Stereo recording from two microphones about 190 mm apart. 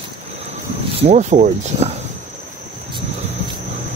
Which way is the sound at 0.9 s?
35° right (ahead or behind).